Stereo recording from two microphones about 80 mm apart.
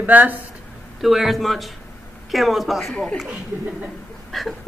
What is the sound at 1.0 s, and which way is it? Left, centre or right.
A man's voice, centre.